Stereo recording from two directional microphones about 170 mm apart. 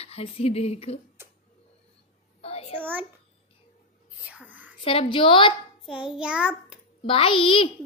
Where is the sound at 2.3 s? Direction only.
35° left (ahead or behind).